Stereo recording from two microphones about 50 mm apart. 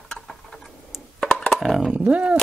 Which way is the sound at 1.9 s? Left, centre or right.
Right.